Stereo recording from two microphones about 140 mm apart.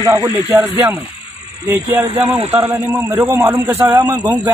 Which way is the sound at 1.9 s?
35° right (ahead or behind).